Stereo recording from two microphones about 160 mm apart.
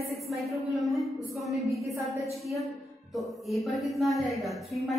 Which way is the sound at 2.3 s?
Centre (ahead or behind).